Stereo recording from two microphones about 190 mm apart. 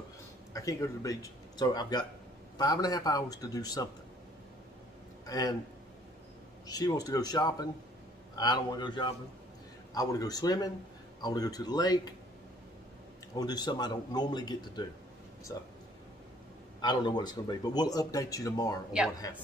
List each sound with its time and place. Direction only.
0.5 s speech: 15° left (ahead or behind)
5.2 s a man's voice: 20° left (ahead or behind)
6.7 s speech: 20° left (ahead or behind)
13.4 s speech: 20° left (ahead or behind)
15.5 s a sound: 15° left (ahead or behind)
16.8 s speech: 25° left (ahead or behind)